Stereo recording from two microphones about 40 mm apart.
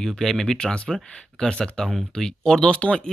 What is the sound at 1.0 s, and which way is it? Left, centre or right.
Speech, left.